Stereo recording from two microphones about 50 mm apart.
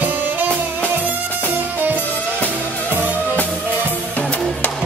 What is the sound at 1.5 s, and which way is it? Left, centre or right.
Music, right.